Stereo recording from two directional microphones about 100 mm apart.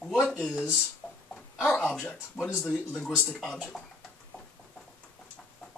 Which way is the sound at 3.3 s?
Centre (ahead or behind).